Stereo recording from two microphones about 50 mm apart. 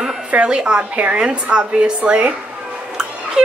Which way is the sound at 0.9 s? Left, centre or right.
Right.